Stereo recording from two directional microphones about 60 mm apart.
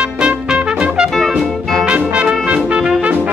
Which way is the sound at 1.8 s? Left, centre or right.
Centre.